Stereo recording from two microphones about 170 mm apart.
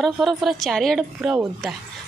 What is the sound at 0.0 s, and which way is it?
A woman's voice, centre (ahead or behind).